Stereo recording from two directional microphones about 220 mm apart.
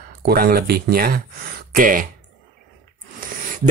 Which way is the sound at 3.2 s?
35° right (ahead or behind).